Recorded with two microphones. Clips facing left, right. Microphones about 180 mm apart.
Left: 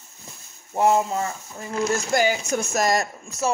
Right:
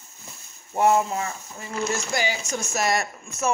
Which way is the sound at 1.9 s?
50° left (ahead or behind).